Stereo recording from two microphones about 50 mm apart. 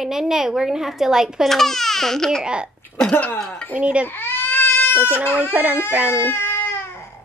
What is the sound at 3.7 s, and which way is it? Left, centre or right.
Speech, right.